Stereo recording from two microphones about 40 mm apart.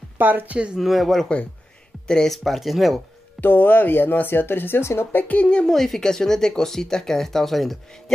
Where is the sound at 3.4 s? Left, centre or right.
Left.